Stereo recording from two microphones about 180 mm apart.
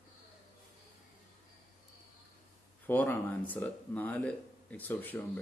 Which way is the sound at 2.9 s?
10° left (ahead or behind).